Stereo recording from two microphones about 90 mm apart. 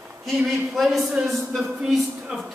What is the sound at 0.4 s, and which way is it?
A man's voice, centre (ahead or behind).